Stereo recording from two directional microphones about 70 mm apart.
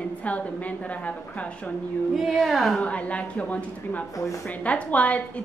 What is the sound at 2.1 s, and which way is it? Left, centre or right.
Speech, centre.